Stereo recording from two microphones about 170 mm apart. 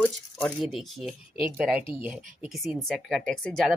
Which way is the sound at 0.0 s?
Centre (ahead or behind).